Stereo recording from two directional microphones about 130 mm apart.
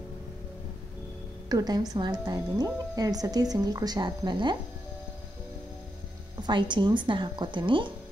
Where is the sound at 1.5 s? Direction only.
30° right (ahead or behind).